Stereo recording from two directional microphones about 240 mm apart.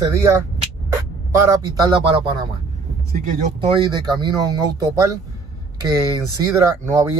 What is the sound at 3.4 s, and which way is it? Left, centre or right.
Speech, right.